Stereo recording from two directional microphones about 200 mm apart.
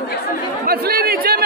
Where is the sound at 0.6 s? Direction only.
50° right (ahead or behind).